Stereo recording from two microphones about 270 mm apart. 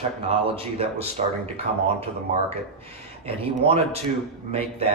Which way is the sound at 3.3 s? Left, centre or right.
Right.